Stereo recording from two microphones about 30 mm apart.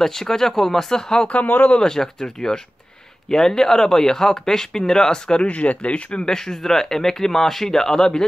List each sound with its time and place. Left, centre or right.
0.0 s speech: centre
1.4 s speech: left
1.8 s speech: centre
5.5 s speech: left
6.2 s speech: centre